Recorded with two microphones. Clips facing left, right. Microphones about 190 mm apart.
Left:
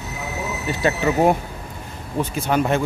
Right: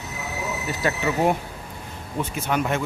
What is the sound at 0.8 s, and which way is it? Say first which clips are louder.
Speech: left 4 dB; 25° left (ahead or behind).